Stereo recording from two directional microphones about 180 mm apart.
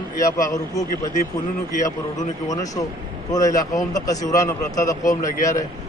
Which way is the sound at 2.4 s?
20° left (ahead or behind).